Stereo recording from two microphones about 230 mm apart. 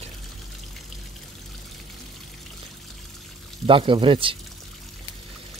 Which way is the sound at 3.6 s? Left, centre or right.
Right.